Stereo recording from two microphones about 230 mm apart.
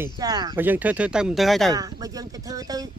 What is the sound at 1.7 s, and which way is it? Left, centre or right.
Speech, centre.